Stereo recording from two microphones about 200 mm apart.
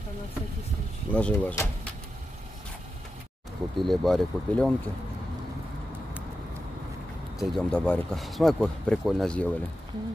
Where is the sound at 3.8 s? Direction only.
Centre (ahead or behind).